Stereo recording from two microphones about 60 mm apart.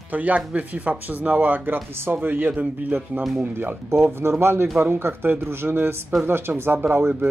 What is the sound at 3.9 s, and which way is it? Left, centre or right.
Speech, right.